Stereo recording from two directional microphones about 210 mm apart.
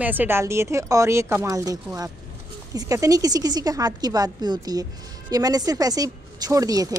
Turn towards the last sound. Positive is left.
turn(degrees=-15)  # may be behind; listen again after turning